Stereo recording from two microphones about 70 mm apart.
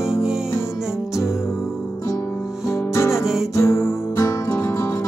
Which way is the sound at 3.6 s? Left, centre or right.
Left.